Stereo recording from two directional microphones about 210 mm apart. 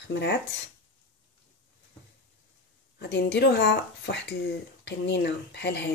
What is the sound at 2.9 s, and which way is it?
Speech, 50° left (ahead or behind).